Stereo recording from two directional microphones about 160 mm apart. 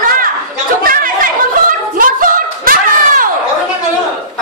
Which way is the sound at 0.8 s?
60° right (ahead or behind).